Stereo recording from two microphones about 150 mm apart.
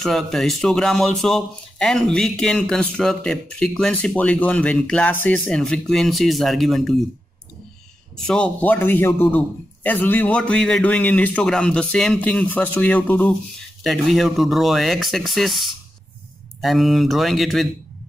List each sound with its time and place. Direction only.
0.0 s speech: centre (ahead or behind)
8.3 s a man's voice: 10° left (ahead or behind)
13.8 s speech: centre (ahead or behind)